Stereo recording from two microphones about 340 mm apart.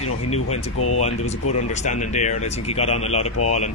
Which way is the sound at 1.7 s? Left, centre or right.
Left.